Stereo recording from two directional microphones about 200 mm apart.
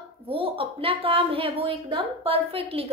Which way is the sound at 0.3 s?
25° right (ahead or behind).